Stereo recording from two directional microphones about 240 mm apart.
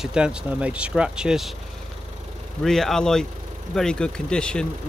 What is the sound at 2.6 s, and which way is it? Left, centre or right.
Speech, centre.